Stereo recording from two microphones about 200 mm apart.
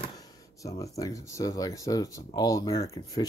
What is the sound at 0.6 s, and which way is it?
Speech, 15° left (ahead or behind).